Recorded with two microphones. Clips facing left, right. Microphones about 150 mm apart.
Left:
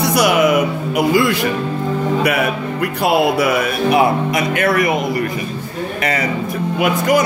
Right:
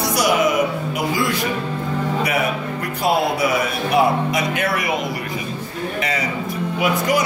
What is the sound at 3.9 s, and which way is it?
Speech, 60° left (ahead or behind).